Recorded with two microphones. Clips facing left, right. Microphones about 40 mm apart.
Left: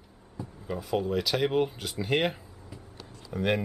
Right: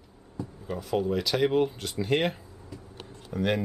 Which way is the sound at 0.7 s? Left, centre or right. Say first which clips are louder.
Right 1 dB; centre.